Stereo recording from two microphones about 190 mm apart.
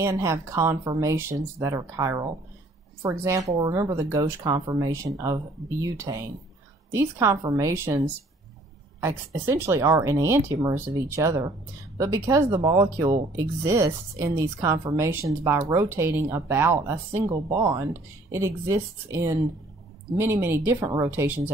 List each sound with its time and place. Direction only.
0.0 s speech: 15° right (ahead or behind)